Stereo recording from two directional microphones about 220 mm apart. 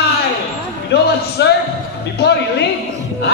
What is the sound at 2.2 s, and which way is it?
Speech, 50° left (ahead or behind).